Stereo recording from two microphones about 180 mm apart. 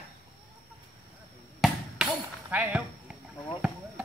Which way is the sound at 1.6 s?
Centre (ahead or behind).